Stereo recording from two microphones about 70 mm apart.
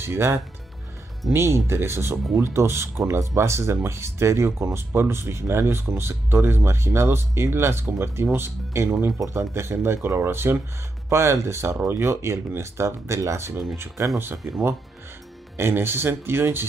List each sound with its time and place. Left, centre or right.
0.0 s speech: right